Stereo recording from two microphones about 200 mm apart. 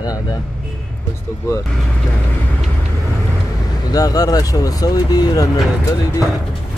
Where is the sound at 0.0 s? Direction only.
20° left (ahead or behind).